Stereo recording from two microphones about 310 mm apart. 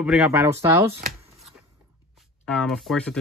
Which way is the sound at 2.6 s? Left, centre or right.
Centre.